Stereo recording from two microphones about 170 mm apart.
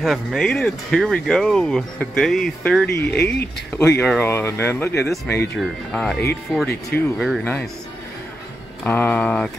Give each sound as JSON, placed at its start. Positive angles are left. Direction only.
{"t": 0.0, "sound": "speech", "side_deg": 0}
{"t": 3.0, "sound": "speech", "side_deg": 80}
{"t": 3.5, "sound": "speech", "side_deg": 5}
{"t": 5.3, "sound": "speech", "side_deg": 75}
{"t": 5.6, "sound": "speech", "side_deg": 5}
{"t": 8.8, "sound": "speech", "side_deg": 10}